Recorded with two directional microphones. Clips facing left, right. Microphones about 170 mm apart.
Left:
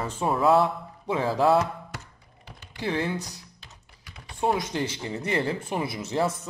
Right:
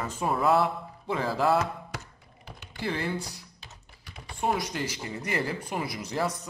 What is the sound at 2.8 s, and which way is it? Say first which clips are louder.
Speech: left 3 dB; 20° left (ahead or behind).